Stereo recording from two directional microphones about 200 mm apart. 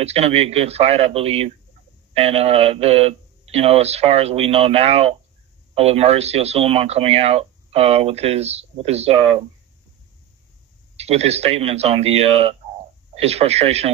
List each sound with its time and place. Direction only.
0.0 s speech: 30° right (ahead or behind)
11.0 s speech: 30° right (ahead or behind)